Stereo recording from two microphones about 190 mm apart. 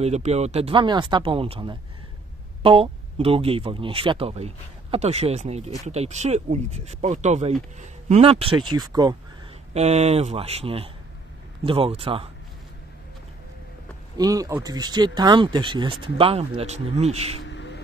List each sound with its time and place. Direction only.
0.0 s speech: 35° right (ahead or behind)
9.8 s speech: 35° right (ahead or behind)
14.1 s speech: 20° right (ahead or behind)
17.5 s a sound: 70° left (ahead or behind)